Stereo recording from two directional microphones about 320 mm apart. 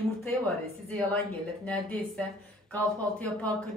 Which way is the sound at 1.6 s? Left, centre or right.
Centre.